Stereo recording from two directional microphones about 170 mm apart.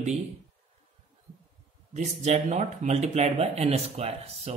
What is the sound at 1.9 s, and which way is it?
Speech, 45° right (ahead or behind).